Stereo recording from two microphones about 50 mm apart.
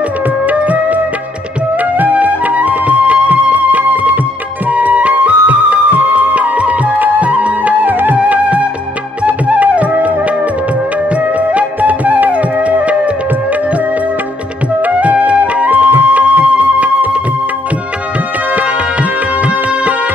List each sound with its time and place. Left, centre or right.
0.5 s music: right
14.8 s music: right
19.4 s music: right